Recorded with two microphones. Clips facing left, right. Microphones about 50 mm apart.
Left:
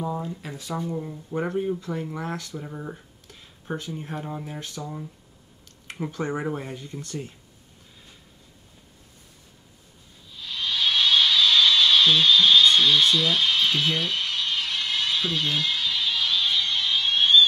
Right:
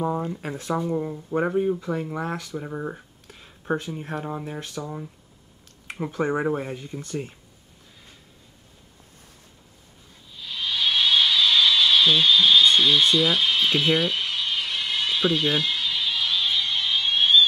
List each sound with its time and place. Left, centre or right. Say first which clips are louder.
0.0 s speech: right 4 dB; right
0.8 s speech: right 5 dB; right
4.2 s speech: right 2 dB; centre
10.3 s music: even; centre